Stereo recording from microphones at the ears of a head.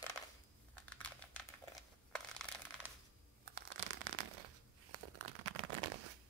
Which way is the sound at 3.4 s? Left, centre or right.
Right.